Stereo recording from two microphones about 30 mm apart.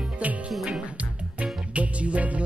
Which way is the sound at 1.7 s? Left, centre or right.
Right.